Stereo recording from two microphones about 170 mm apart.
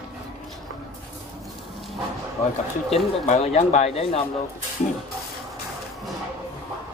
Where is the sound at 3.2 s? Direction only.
40° left (ahead or behind).